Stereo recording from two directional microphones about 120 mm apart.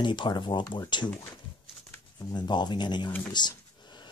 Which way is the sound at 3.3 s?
40° left (ahead or behind).